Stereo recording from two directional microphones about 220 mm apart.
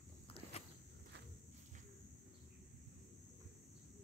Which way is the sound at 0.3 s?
30° left (ahead or behind).